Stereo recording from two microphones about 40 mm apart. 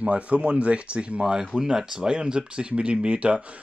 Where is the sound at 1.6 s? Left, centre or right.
Centre.